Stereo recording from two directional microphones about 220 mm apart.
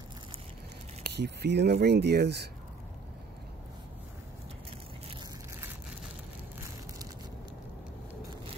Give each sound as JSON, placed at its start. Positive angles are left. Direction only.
{"t": 1.0, "sound": "speech", "side_deg": -50}